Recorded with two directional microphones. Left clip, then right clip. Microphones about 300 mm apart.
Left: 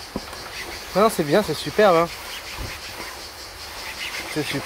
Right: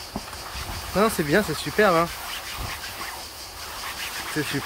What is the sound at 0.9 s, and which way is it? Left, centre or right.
Speech, centre.